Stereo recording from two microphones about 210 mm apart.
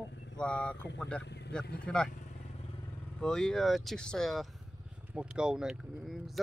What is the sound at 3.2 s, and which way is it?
Speech, 5° left (ahead or behind).